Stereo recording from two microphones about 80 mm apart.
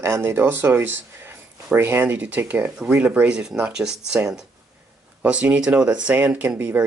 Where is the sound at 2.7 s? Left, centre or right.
Centre.